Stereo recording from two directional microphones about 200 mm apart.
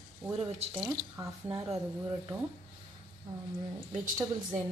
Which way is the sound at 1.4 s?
20° right (ahead or behind).